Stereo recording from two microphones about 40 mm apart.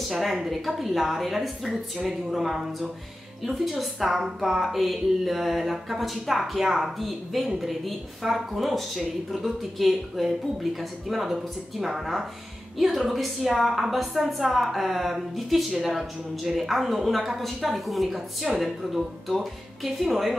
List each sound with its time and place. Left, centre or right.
0.1 s a woman's voice: centre